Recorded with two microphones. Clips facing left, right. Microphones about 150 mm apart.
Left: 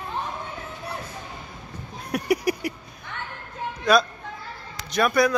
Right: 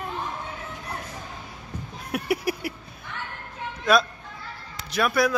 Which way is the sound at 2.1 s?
5° right (ahead or behind).